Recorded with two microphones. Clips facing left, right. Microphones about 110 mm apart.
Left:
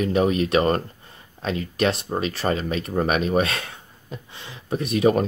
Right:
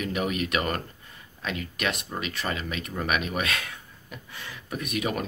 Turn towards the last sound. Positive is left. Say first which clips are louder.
# left 10 dB
turn(degrees=35)  # may be behind; listen again after turning